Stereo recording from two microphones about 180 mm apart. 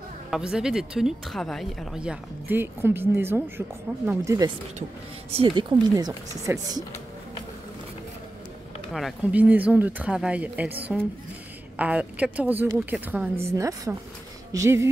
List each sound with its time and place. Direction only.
0.3 s speech: 5° right (ahead or behind)
5.3 s speech: 30° right (ahead or behind)
8.9 s speech: 5° right (ahead or behind)